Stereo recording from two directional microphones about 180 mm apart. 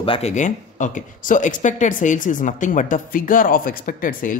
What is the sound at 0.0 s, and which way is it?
Speech, 30° left (ahead or behind).